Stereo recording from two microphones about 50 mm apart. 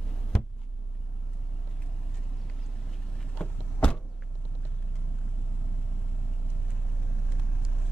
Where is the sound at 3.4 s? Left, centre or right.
Centre.